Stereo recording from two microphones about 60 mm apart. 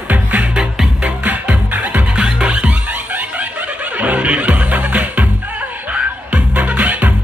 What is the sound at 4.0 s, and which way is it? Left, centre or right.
Music, right.